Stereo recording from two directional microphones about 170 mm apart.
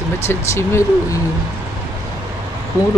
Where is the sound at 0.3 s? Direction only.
15° left (ahead or behind).